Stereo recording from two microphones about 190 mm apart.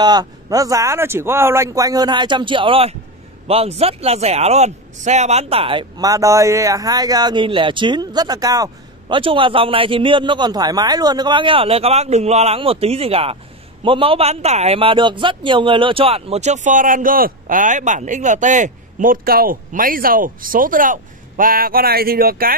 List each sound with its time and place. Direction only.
0.0 s a man's voice: 20° right (ahead or behind); by 22.6 s 50° right (ahead or behind)